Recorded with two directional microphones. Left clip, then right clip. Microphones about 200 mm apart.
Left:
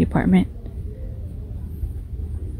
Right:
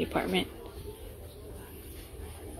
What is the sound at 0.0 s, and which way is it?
Speech, 25° left (ahead or behind).